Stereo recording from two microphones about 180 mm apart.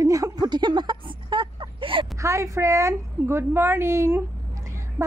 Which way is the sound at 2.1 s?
15° right (ahead or behind).